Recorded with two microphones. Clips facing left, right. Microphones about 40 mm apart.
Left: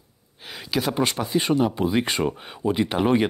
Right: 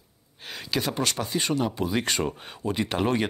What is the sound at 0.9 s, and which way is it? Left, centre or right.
Speech, centre.